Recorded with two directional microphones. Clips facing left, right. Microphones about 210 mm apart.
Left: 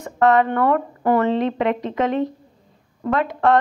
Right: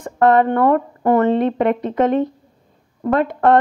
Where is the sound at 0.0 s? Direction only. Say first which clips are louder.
Right 2 dB; 50° right (ahead or behind).